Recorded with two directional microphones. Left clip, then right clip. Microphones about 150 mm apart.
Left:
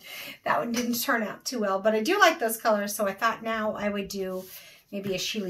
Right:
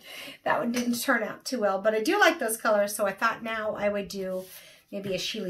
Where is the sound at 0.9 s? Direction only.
20° right (ahead or behind).